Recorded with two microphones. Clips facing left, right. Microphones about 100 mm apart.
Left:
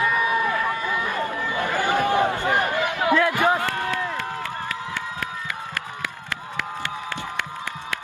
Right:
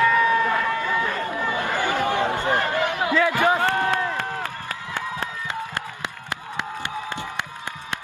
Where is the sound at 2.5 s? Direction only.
15° left (ahead or behind).